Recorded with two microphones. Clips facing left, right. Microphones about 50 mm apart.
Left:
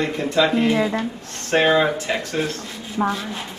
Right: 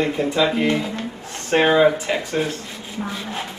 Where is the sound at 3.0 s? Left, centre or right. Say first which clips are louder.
Left 8 dB; left.